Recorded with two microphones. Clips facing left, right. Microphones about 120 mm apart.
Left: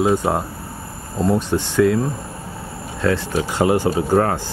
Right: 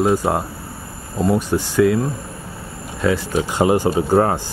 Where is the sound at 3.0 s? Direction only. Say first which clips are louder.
Right 1 dB; 15° right (ahead or behind).